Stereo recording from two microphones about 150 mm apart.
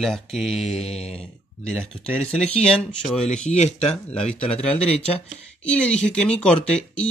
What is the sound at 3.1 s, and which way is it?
Speech, 50° left (ahead or behind).